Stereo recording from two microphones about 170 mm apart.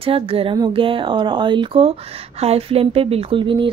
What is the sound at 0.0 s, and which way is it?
A woman's voice, 35° right (ahead or behind).